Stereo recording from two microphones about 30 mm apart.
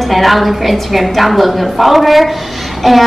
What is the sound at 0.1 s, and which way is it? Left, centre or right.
A woman's voice, centre.